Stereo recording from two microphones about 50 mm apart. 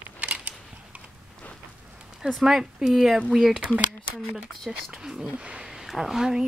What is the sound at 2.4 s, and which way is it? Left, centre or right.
Speech, centre.